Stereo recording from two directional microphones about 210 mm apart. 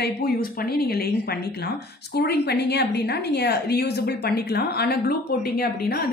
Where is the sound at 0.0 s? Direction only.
45° left (ahead or behind).